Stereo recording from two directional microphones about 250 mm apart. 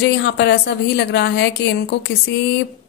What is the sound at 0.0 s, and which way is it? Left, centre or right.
Speech, left.